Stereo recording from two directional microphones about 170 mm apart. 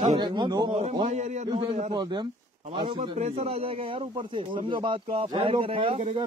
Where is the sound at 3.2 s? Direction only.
40° right (ahead or behind).